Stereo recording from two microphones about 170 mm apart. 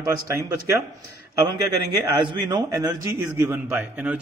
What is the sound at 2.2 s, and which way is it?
A man's voice, 25° right (ahead or behind).